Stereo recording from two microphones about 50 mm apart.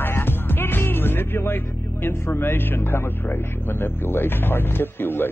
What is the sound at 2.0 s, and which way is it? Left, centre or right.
Speech, left.